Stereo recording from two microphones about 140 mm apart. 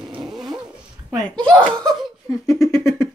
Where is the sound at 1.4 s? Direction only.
5° left (ahead or behind).